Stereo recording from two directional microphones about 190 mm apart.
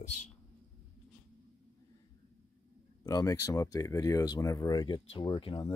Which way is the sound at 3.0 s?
20° left (ahead or behind).